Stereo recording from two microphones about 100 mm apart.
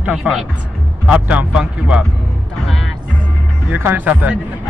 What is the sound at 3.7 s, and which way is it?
Speech, 20° right (ahead or behind).